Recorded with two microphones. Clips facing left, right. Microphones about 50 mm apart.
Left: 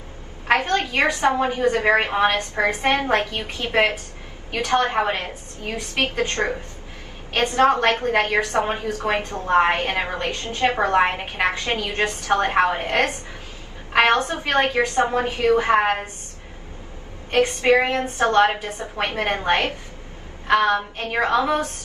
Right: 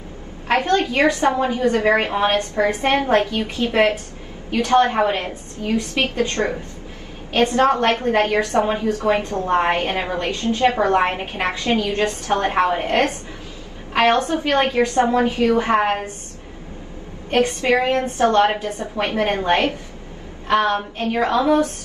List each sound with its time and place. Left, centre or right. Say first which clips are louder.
0.7 s a woman's voice: right 3 dB; left
17.4 s a woman's voice: left 1 dB; left